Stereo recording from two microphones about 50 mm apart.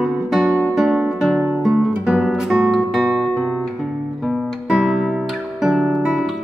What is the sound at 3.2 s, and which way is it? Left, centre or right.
Guitar, centre.